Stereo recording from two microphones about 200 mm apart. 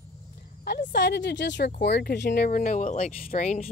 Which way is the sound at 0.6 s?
55° left (ahead or behind).